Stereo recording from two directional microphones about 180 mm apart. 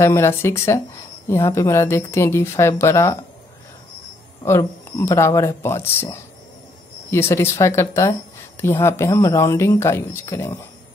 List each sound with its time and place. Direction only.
0.0 s speech: 15° left (ahead or behind)
4.5 s speech: 15° left (ahead or behind)